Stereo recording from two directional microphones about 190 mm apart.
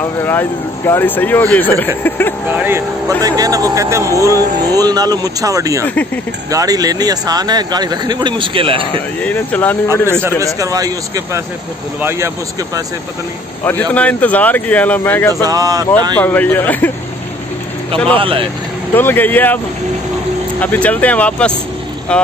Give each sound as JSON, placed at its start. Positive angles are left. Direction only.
{"t": 0.0, "sound": "speech", "side_deg": 10}
{"t": 2.5, "sound": "speech", "side_deg": -10}
{"t": 9.2, "sound": "speech", "side_deg": 10}
{"t": 10.4, "sound": "speech", "side_deg": -20}
{"t": 13.7, "sound": "speech", "side_deg": 10}
{"t": 15.4, "sound": "speech", "side_deg": -20}
{"t": 16.2, "sound": "speech", "side_deg": 10}
{"t": 17.9, "sound": "a man's voice", "side_deg": 5}
{"t": 18.2, "sound": "speech", "side_deg": -30}
{"t": 18.9, "sound": "speech", "side_deg": 10}
{"t": 20.6, "sound": "speech", "side_deg": 10}